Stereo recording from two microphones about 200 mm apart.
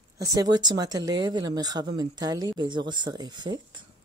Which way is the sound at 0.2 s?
15° right (ahead or behind).